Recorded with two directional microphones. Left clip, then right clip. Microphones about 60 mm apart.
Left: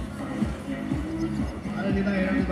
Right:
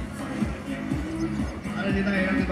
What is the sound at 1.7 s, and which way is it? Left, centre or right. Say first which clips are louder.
Music: right 1 dB; right.